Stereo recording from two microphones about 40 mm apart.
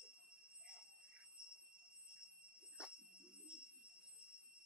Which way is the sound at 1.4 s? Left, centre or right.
Centre.